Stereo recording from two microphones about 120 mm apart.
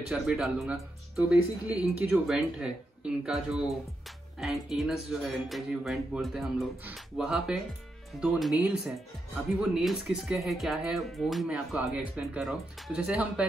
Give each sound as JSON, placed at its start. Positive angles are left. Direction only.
{"t": 0.1, "sound": "speech", "side_deg": -5}